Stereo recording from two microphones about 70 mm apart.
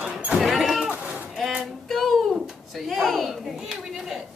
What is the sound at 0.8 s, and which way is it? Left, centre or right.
Sheep, centre.